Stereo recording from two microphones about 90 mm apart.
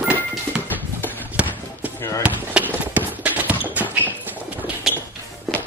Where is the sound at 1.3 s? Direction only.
20° right (ahead or behind).